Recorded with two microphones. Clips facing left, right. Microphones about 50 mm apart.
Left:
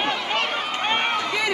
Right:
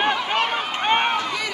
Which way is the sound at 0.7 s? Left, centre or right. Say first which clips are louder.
Right 3 dB; right.